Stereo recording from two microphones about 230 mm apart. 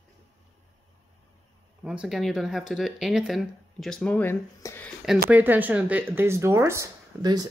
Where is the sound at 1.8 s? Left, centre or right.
Centre.